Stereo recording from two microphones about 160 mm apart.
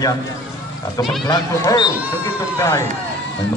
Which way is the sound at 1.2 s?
25° left (ahead or behind).